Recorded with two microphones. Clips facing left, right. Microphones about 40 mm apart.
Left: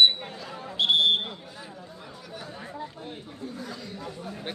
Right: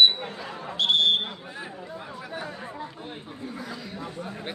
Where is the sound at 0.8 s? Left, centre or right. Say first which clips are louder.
Even; centre.